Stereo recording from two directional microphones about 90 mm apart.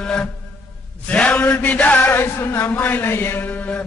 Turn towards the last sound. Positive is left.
turn(degrees=15)  # may be behind; listen again after turning